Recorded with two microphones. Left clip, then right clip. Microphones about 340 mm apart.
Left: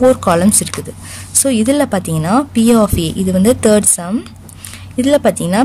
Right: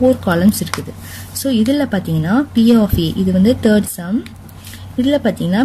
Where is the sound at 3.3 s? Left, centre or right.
Left.